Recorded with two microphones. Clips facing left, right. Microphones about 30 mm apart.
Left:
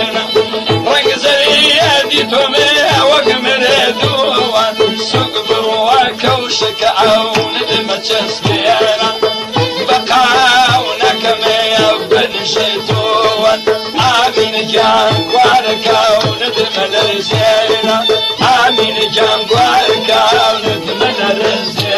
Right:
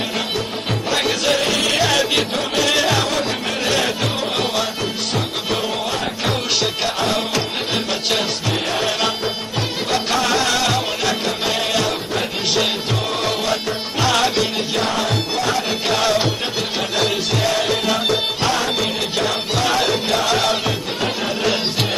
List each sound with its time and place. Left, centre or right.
1.2 s music: left
1.8 s music: left
2.1 s music: left
2.7 s music: left
3.1 s music: left
3.6 s music: left
5.9 s music: left
10.1 s music: left
13.1 s music: left
14.7 s music: left
15.9 s music: left
18.4 s music: left
19.5 s music: left
20.1 s music: left